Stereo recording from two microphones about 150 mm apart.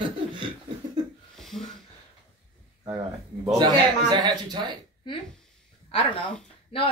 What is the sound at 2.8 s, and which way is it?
Speech, 30° right (ahead or behind).